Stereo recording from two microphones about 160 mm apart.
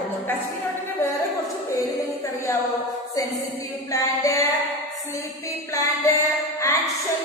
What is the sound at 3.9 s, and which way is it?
A capella, 20° left (ahead or behind).